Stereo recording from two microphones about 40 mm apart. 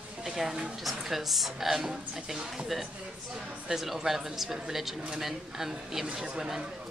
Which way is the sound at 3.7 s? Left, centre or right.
Centre.